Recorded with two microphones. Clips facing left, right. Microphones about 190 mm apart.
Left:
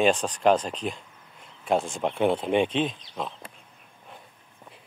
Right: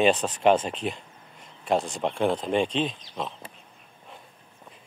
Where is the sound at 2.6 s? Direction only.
55° left (ahead or behind).